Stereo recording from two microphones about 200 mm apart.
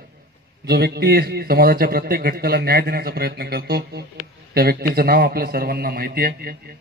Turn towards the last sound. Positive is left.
turn(degrees=-50)  # may be behind; listen again after turning